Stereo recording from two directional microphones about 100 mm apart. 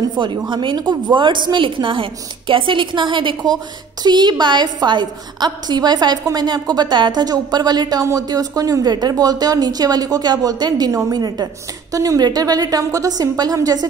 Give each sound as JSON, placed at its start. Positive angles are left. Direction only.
{"t": 0.1, "sound": "a woman's voice", "side_deg": -50}